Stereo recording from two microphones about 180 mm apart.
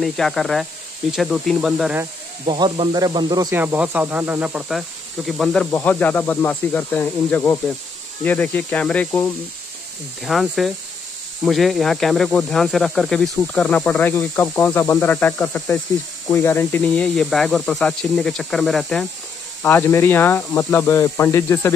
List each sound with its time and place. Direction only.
0.0 s speech: centre (ahead or behind)
2.4 s speech: 30° right (ahead or behind)
3.5 s speech: 10° right (ahead or behind); by 21.7 s 15° left (ahead or behind)